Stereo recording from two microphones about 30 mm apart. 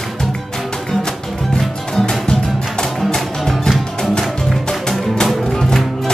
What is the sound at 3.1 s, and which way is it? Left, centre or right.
Music, centre.